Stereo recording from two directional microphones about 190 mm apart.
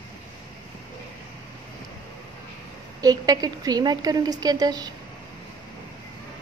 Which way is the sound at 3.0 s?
20° right (ahead or behind).